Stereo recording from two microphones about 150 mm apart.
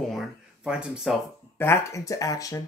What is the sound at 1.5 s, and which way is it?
Speech, 15° left (ahead or behind).